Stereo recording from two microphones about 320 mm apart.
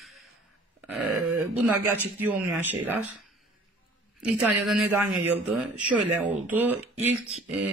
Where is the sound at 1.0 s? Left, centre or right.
Right.